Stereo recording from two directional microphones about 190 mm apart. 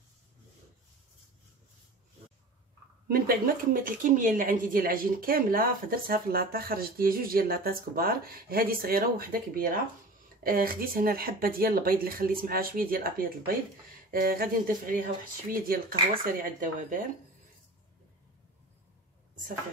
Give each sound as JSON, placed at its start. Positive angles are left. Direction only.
{"t": 3.1, "sound": "speech", "side_deg": -50}